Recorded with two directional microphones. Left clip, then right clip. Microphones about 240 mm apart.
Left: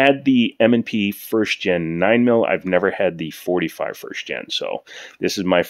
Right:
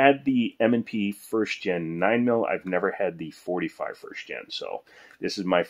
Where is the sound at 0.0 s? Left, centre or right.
Left.